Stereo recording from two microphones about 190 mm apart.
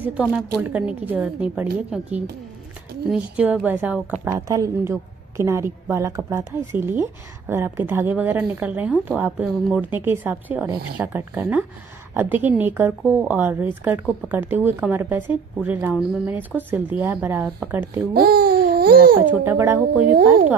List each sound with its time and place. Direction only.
0.0 s a woman's voice: 5° right (ahead or behind)
18.1 s babbling: 55° right (ahead or behind)
19.2 s a woman's voice: 10° right (ahead or behind)